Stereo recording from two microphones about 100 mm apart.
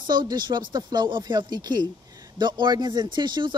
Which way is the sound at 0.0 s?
45° right (ahead or behind).